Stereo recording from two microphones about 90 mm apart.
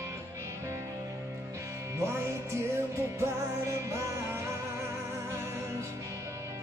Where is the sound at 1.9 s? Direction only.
30° right (ahead or behind).